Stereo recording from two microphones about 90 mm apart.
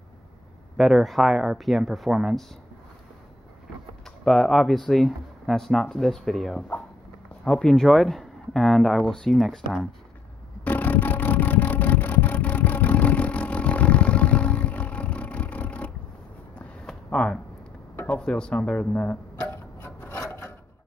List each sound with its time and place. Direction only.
0.7 s speech: centre (ahead or behind)
4.0 s speech: 5° left (ahead or behind)
10.6 s music: 20° left (ahead or behind)
16.5 s a sound: 10° left (ahead or behind)
18.1 s speech: 10° left (ahead or behind)
19.4 s a sound: 30° left (ahead or behind)